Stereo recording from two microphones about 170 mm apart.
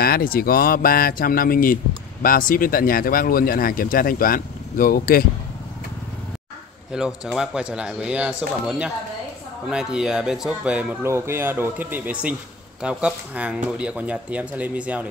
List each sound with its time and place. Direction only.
0.0 s speech: 60° left (ahead or behind)
6.9 s speech: 5° right (ahead or behind)